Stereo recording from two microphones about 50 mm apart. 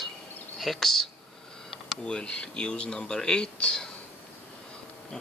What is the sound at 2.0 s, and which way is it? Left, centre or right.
Speech, centre.